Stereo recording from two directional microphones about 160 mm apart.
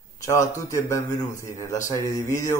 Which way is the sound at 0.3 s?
20° left (ahead or behind).